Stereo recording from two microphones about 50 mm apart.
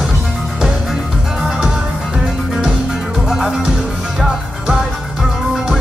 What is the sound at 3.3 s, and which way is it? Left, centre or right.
Music, centre.